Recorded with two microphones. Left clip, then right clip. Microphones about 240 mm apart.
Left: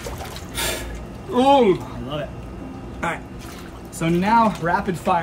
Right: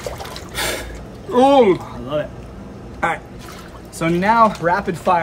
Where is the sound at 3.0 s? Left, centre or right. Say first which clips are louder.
Right 6 dB; centre.